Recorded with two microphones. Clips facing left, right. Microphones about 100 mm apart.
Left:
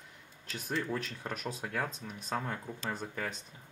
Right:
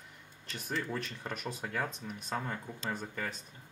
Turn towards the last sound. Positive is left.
turn(degrees=0)  # may be behind; listen again after turning